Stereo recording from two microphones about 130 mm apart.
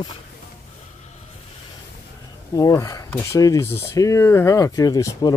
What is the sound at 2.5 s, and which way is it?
Speech, 30° left (ahead or behind).